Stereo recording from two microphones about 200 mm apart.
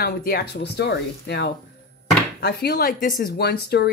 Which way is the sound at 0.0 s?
50° left (ahead or behind).